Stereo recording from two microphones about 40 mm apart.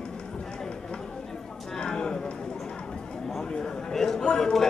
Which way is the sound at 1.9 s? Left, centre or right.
Centre.